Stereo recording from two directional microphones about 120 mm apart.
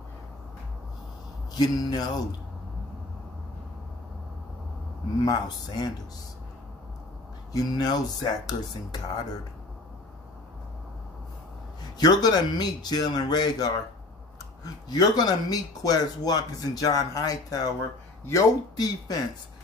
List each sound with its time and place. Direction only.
1.6 s speech: 35° left (ahead or behind)
5.2 s speech: 35° left (ahead or behind)
7.5 s speech: 35° left (ahead or behind)
12.0 s speech: 35° left (ahead or behind)
18.8 s speech: 30° left (ahead or behind)